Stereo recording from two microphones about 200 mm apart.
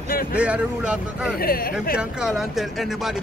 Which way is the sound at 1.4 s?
50° left (ahead or behind).